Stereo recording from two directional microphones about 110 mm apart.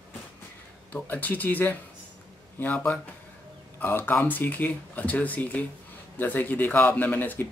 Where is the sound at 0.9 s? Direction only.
15° left (ahead or behind).